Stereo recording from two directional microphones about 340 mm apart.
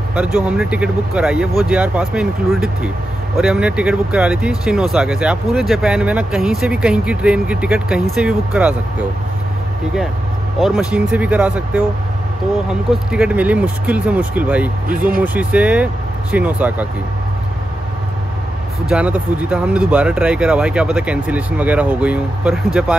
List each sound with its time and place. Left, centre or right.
0.1 s speech: centre
10.6 s speech: centre
13.1 s speech: centre
14.9 s speech: right
15.2 s speech: centre
18.9 s speech: centre